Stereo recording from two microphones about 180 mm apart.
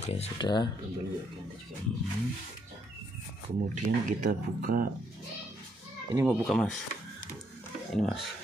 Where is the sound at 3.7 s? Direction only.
45° right (ahead or behind).